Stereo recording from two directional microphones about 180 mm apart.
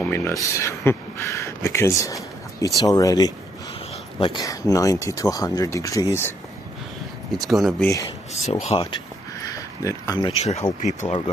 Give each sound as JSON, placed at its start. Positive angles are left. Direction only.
{"t": 0.1, "sound": "speech", "side_deg": 15}
{"t": 7.3, "sound": "speech", "side_deg": 0}
{"t": 8.6, "sound": "speech", "side_deg": 30}
{"t": 9.4, "sound": "a sound", "side_deg": 20}
{"t": 10.4, "sound": "speech", "side_deg": 35}
{"t": 11.1, "sound": "speech", "side_deg": 30}